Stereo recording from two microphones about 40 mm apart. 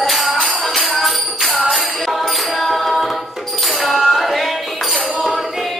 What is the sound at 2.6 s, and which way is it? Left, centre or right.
A capella, centre.